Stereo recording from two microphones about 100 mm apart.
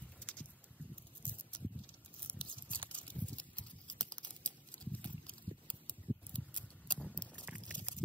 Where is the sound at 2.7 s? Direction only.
55° right (ahead or behind).